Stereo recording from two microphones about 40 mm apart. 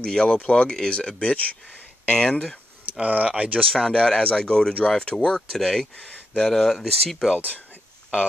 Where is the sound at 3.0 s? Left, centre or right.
Right.